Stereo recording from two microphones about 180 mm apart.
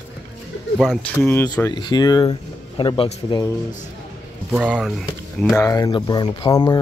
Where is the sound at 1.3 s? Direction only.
10° left (ahead or behind); by 3.4 s 30° left (ahead or behind).